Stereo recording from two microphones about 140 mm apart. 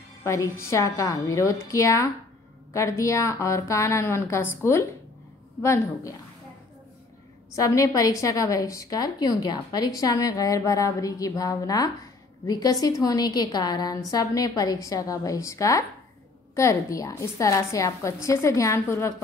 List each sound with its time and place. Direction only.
0.2 s a woman's voice: 20° left (ahead or behind)
7.5 s a woman's voice: 25° left (ahead or behind)